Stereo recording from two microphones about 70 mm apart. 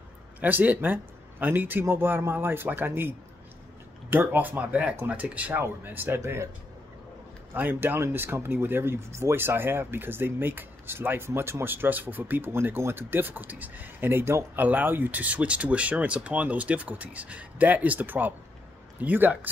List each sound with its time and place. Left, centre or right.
0.4 s speech: right
5.6 s speech: right
7.5 s speech: right